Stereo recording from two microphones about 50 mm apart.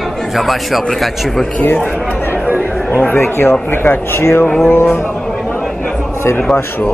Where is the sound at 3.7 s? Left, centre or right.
Left.